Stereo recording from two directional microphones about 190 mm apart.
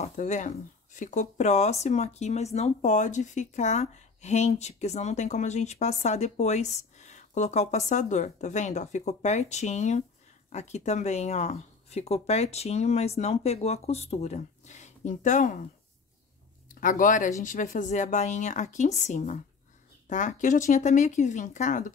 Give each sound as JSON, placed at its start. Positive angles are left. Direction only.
{"t": 0.0, "sound": "speech", "side_deg": 40}
{"t": 16.6, "sound": "speech", "side_deg": 45}